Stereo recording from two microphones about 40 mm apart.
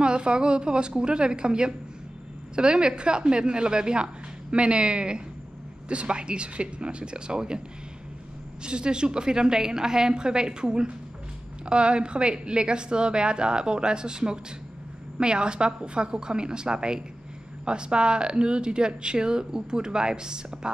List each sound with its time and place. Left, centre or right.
0.0 s speech: right
8.6 s speech: right